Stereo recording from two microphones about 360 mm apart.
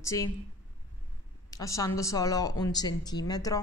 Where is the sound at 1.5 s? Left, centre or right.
Centre.